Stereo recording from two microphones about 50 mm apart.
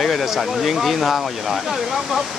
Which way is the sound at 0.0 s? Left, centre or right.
Centre.